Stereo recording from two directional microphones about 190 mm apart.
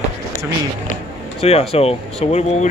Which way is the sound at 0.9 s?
35° left (ahead or behind).